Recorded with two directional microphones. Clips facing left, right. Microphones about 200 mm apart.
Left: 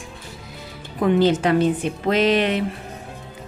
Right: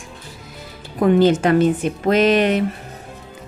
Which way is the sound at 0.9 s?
45° right (ahead or behind).